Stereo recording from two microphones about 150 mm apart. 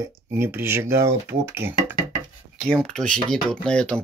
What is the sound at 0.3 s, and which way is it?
Speech, 15° right (ahead or behind).